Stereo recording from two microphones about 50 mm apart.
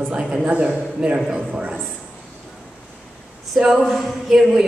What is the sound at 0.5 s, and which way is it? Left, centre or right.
A man's voice, right.